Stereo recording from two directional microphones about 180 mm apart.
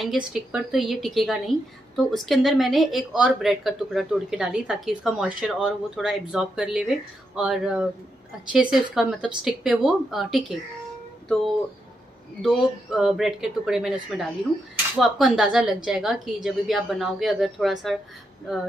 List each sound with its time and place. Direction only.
0.0 s a woman's voice: centre (ahead or behind)
12.4 s a woman's voice: centre (ahead or behind)